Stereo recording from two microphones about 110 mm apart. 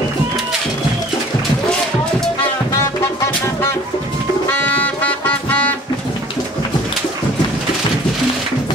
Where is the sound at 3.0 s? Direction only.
25° left (ahead or behind).